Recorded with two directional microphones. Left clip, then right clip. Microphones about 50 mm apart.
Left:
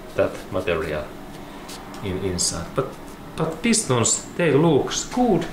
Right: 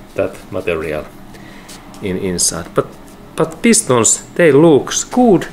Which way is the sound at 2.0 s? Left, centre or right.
Right.